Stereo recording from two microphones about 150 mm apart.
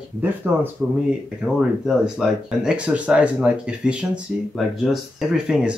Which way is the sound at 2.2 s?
5° right (ahead or behind).